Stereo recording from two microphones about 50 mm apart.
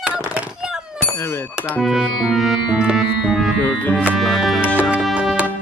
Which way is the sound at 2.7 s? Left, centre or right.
Centre.